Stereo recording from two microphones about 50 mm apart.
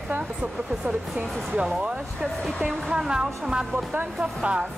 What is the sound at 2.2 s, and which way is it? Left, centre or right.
Speech, centre.